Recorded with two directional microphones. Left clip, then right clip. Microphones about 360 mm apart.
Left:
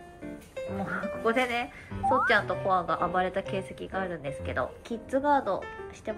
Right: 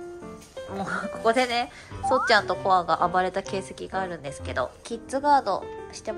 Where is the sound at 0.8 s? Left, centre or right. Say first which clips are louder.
Right 5 dB; centre.